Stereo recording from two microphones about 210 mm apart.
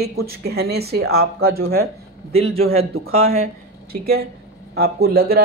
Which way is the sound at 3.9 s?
45° right (ahead or behind).